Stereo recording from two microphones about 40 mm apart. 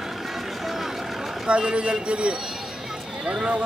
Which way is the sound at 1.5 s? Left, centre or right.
Right.